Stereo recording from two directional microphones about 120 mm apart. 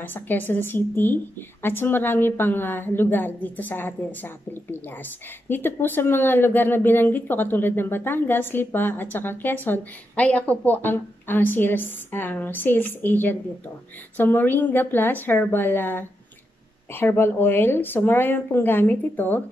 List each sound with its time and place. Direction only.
0.0 s speech: 15° left (ahead or behind)